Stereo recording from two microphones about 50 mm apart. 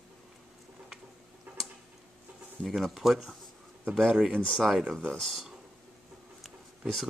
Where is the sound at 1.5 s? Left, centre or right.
Right.